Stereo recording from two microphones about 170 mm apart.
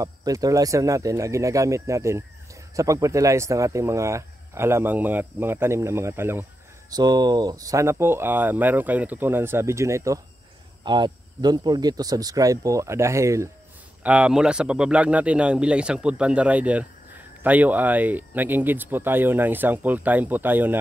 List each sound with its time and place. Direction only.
0.0 s speech: 20° right (ahead or behind)
14.0 s speech: 5° right (ahead or behind)